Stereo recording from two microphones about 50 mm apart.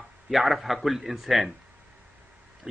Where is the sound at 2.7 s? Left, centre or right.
Centre.